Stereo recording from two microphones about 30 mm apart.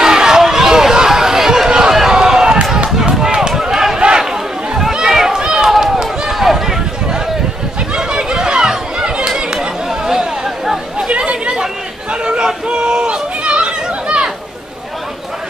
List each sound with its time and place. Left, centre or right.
0.0 s a sound: centre
1.9 s run: centre
4.2 s chatter: centre
5.0 s run: centre
5.4 s run: right
6.3 s run: centre
7.9 s chatter: right; by 10.8 s centre
11.1 s chatter: right